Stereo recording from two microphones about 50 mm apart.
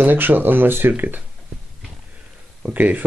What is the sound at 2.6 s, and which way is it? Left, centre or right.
Speech, right.